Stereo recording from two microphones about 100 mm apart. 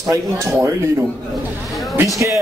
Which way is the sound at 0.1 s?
30° right (ahead or behind).